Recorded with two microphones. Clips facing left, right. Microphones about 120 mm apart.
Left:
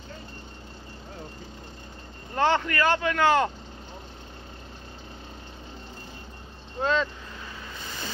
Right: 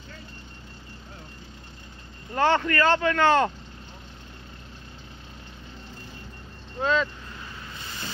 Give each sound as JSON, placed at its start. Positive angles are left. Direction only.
{"t": 2.3, "sound": "speech", "side_deg": 15}
{"t": 6.8, "sound": "speech", "side_deg": 40}